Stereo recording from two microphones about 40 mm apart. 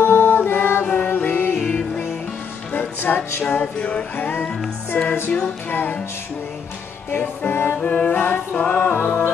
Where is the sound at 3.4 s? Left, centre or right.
Left.